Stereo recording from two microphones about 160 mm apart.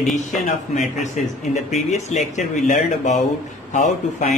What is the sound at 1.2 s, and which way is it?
Speech, 45° left (ahead or behind).